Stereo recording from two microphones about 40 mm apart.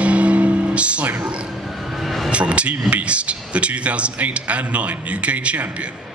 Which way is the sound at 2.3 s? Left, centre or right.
Right.